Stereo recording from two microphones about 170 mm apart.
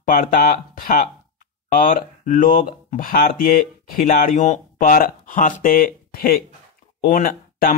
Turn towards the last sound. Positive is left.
turn(degrees=55)  # may be behind; listen again after turning